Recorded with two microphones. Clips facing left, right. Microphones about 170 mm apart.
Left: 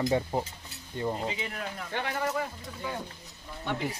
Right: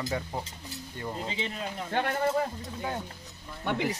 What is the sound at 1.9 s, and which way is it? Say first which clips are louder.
Speech: right 4 dB; 55° right (ahead or behind).